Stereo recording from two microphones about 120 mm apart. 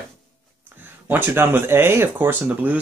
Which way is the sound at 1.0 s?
15° right (ahead or behind).